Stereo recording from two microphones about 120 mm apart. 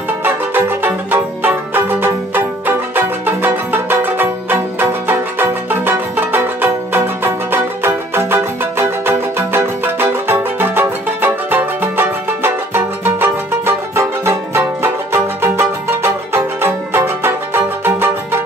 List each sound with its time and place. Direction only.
0.2 s music: 15° right (ahead or behind)